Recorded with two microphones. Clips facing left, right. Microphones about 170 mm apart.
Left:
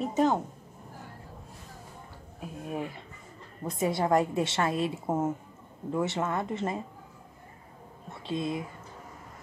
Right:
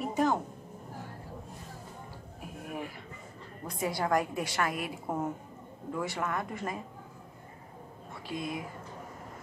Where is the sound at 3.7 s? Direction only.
25° left (ahead or behind).